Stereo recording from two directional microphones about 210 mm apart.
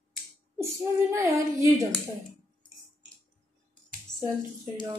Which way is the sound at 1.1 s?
15° right (ahead or behind).